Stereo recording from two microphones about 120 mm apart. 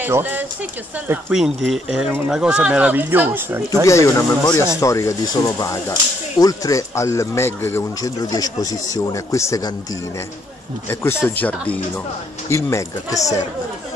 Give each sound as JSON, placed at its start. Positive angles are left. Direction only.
{"t": 0.0, "sound": "speech", "side_deg": -15}
{"t": 1.3, "sound": "speech", "side_deg": 0}
{"t": 3.8, "sound": "speech", "side_deg": 25}
{"t": 8.2, "sound": "speech", "side_deg": 30}
{"t": 10.9, "sound": "speech", "side_deg": 20}
{"t": 12.4, "sound": "speech", "side_deg": 25}